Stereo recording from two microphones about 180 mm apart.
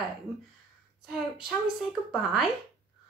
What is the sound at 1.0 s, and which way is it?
Speech, centre (ahead or behind).